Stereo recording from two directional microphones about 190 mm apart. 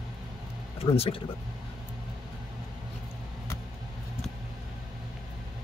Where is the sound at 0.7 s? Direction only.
30° left (ahead or behind).